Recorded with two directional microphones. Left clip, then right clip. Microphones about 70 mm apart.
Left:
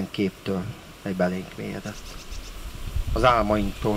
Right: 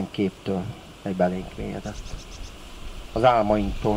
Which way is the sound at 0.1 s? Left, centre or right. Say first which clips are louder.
Even; left.